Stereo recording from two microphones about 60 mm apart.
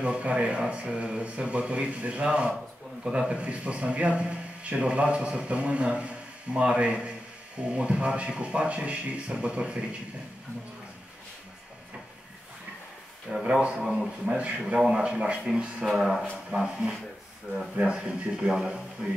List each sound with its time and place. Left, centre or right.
0.0 s a man's voice: centre
13.3 s speech: centre
15.8 s speech: centre